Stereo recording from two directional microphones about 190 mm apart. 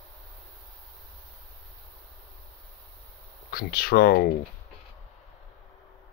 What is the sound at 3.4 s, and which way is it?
Speech, 55° left (ahead or behind).